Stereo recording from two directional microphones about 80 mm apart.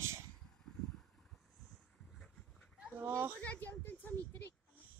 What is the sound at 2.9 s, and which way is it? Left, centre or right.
Speech, right.